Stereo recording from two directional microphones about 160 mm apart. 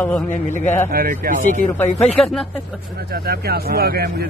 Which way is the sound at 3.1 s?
75° right (ahead or behind).